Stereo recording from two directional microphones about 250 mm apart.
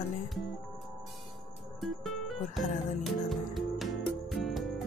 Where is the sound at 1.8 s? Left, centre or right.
Centre.